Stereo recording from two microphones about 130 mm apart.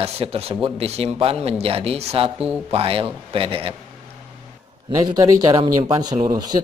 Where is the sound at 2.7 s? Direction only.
45° right (ahead or behind).